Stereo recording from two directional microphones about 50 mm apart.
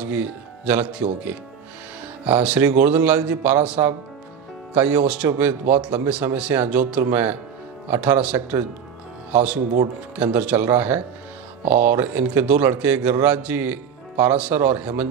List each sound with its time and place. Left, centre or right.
0.0 s speech: right
3.8 s speech: right
4.7 s speech: right
5.4 s speech: right
5.8 s speech: right
7.1 s speech: right